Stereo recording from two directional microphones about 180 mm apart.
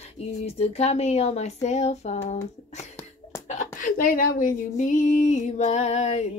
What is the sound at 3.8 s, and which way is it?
Speech, 50° left (ahead or behind).